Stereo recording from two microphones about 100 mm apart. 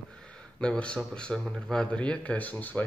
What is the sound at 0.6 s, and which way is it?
Speech, 10° left (ahead or behind).